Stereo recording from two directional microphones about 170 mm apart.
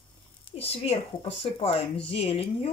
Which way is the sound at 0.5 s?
35° left (ahead or behind).